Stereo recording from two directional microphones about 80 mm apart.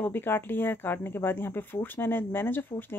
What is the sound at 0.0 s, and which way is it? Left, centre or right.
Speech, left.